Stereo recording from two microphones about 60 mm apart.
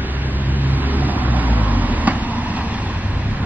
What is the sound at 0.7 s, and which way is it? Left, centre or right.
Vehicle, right.